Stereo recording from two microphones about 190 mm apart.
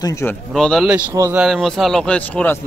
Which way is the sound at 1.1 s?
15° right (ahead or behind).